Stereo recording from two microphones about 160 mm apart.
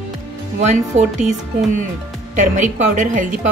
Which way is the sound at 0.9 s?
45° right (ahead or behind).